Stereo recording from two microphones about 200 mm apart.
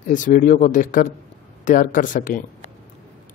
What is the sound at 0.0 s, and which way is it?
Speech, 40° left (ahead or behind).